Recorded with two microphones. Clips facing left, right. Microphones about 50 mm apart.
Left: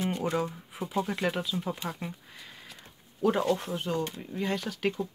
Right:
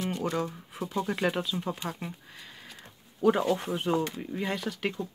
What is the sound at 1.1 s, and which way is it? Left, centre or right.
Speech, centre.